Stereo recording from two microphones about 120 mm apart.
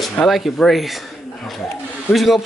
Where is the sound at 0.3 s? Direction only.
Centre (ahead or behind).